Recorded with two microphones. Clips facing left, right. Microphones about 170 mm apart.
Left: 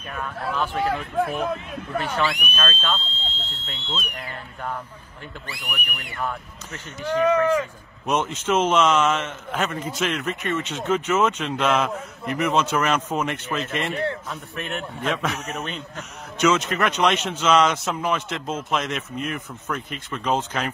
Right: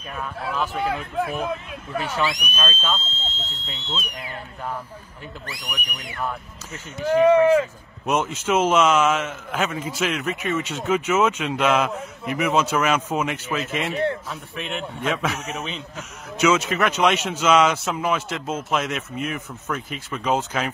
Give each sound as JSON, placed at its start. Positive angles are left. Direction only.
{"t": 0.1, "sound": "a man's voice", "side_deg": -5}
{"t": 5.7, "sound": "a man's voice", "side_deg": -5}